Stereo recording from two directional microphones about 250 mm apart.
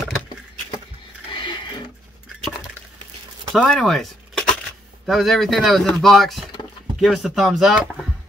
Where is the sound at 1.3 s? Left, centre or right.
Centre.